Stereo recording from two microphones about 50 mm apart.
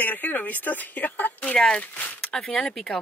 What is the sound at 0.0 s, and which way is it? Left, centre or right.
Speech, left.